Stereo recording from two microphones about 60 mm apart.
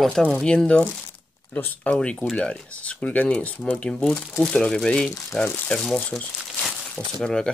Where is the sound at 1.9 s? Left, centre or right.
Centre.